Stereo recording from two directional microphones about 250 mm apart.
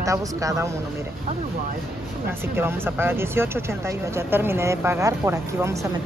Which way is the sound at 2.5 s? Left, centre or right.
Centre.